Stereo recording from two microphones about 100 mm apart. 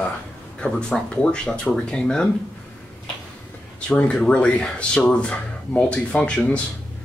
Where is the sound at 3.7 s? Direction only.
10° left (ahead or behind).